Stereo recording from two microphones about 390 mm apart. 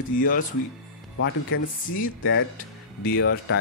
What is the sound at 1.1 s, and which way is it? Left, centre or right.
Speech, left.